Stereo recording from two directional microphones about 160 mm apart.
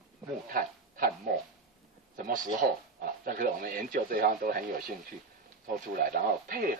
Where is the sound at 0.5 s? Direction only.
65° right (ahead or behind).